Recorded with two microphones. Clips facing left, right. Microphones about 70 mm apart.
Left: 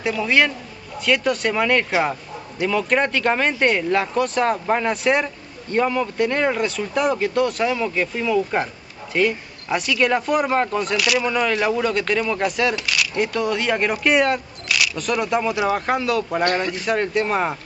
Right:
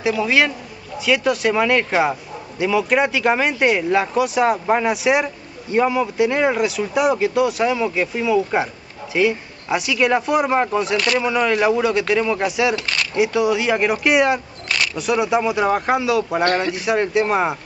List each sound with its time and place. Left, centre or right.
0.0 s speech: centre